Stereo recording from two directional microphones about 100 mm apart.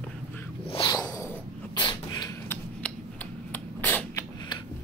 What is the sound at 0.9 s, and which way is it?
Snort, 40° left (ahead or behind).